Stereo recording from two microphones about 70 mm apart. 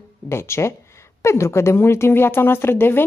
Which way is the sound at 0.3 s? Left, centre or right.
Left.